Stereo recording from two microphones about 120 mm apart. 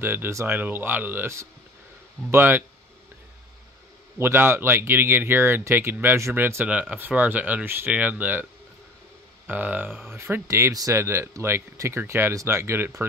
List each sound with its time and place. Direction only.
0.0 s speech: 20° right (ahead or behind)
4.2 s speech: 20° right (ahead or behind)
9.5 s speech: 15° right (ahead or behind)